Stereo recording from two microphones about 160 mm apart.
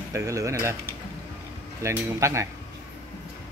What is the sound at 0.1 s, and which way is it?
Speech, 20° right (ahead or behind).